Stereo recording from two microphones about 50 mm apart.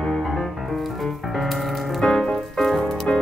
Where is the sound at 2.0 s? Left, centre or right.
Centre.